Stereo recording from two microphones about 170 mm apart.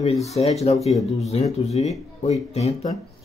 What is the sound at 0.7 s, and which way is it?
Speech, centre (ahead or behind).